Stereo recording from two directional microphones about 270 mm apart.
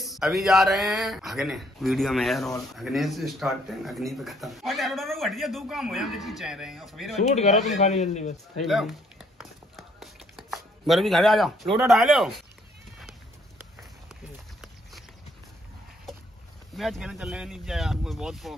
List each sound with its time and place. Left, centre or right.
0.0 s speech: centre
7.2 s a man's voice: left
8.6 s a sound: centre
11.9 s speech: centre
14.6 s a sound: centre
16.7 s speech: centre